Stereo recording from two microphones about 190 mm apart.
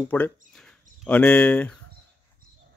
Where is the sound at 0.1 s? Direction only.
10° left (ahead or behind).